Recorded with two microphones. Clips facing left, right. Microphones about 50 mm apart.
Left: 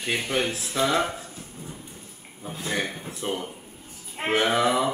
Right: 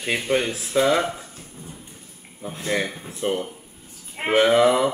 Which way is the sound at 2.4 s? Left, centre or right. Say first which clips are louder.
Right 4 dB; right.